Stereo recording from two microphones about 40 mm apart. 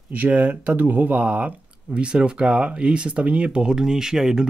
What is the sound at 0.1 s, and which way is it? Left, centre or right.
Speech, right.